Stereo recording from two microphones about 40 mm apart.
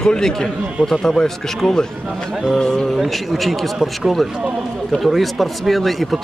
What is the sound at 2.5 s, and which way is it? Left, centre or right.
Speech, centre.